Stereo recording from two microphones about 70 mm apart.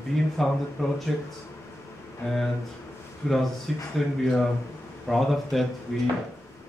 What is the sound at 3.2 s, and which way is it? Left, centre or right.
Speech, centre.